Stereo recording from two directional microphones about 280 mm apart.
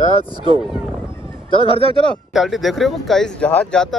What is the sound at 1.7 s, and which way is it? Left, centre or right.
Speech, centre.